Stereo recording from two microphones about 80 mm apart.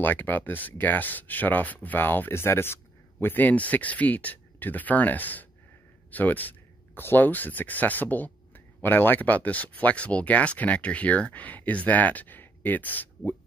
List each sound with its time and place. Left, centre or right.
0.0 s a man's voice: left